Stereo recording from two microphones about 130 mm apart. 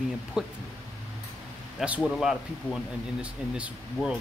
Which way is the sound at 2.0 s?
Centre (ahead or behind).